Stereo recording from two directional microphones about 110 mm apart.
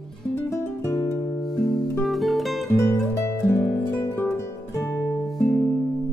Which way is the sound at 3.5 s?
20° left (ahead or behind).